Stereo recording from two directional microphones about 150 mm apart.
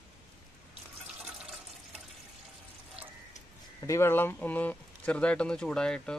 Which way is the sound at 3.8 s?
20° left (ahead or behind).